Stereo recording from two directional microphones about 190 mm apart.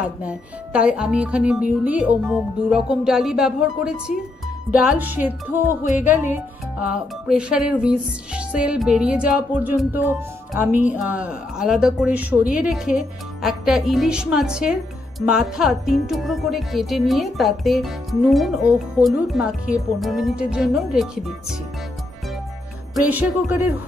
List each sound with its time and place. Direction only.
0.2 s a woman's voice: 5° right (ahead or behind)
4.6 s music: 5° right (ahead or behind)
7.2 s a woman's voice: 5° right (ahead or behind)
23.0 s music: 10° right (ahead or behind)